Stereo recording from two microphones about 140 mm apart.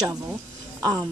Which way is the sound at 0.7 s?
25° right (ahead or behind).